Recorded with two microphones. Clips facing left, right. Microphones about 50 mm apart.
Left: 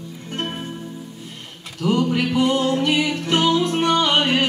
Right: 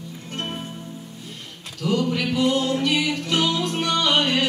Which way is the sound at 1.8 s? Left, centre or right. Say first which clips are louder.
Left 3 dB; left.